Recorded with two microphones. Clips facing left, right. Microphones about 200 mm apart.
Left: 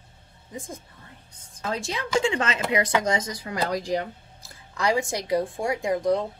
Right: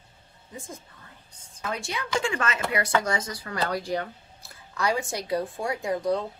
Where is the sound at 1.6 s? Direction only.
25° left (ahead or behind).